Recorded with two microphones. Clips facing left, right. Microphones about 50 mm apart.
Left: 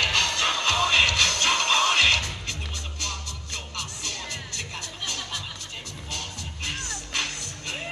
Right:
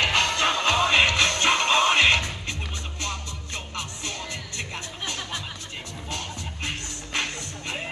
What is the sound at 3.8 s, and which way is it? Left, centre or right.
Music, right.